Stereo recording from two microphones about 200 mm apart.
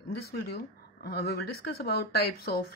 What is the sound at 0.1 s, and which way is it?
Speech, 55° left (ahead or behind).